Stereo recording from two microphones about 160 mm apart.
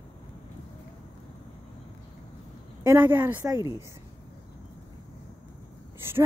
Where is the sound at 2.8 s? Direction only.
10° right (ahead or behind).